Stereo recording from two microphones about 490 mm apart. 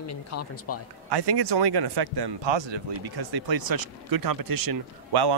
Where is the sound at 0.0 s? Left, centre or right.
Left.